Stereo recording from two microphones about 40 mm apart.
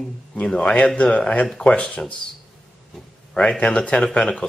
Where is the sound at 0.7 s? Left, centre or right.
Left.